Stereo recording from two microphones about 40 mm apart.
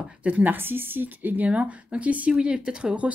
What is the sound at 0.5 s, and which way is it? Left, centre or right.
Speech, right.